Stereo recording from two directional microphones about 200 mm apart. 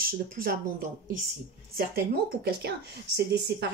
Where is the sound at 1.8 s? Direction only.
50° right (ahead or behind).